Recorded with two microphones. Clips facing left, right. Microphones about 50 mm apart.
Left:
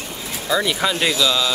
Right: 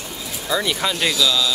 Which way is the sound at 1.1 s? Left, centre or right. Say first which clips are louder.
Left 1 dB; left.